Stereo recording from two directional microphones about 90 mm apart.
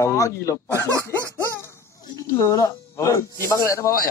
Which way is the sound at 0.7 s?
30° right (ahead or behind).